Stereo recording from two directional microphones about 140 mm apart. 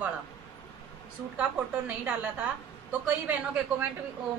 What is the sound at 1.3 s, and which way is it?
A woman's voice, 10° right (ahead or behind).